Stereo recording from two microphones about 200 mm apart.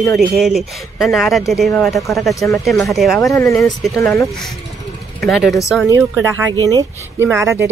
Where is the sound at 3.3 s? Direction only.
15° left (ahead or behind).